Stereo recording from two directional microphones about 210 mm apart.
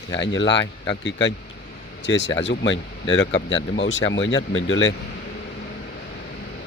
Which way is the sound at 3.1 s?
25° left (ahead or behind).